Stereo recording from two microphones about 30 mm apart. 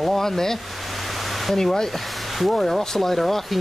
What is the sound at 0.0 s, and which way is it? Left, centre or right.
Speech, centre.